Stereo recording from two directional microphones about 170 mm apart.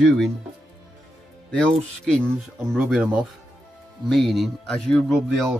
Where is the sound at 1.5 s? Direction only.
5° left (ahead or behind).